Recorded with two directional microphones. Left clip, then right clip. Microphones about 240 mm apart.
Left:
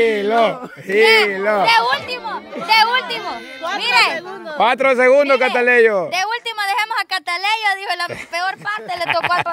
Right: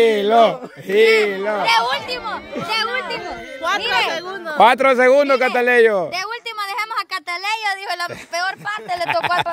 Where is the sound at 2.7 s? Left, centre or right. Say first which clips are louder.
Left 8 dB; left.